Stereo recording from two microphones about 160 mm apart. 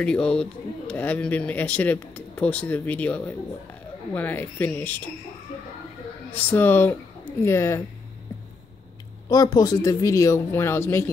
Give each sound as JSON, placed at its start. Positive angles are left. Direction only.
{"t": 0.0, "sound": "speech", "side_deg": 5}
{"t": 6.3, "sound": "speech", "side_deg": 10}
{"t": 9.3, "sound": "speech", "side_deg": 25}